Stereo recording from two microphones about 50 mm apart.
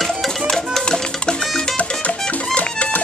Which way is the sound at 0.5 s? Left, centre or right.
Centre.